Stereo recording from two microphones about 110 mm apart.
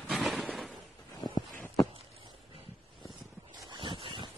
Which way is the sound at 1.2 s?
45° left (ahead or behind).